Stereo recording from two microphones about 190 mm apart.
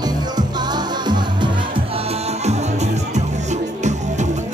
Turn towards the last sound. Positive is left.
turn(degrees=-40)  # may be behind; listen again after turning